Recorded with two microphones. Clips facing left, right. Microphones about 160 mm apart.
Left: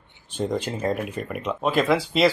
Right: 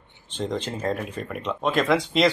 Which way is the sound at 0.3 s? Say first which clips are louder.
Left 2 dB; 10° left (ahead or behind).